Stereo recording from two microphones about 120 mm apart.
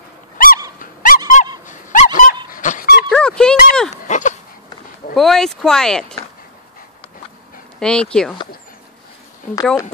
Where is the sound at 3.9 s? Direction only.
90° left.